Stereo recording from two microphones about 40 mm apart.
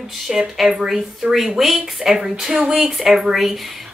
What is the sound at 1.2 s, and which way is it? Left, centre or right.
Speech, right.